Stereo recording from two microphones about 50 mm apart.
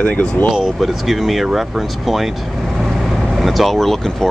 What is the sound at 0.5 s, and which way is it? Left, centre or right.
Speech, centre.